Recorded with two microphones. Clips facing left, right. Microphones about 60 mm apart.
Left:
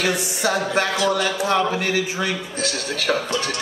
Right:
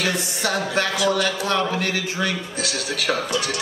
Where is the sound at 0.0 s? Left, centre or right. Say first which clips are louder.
Left 2 dB; centre.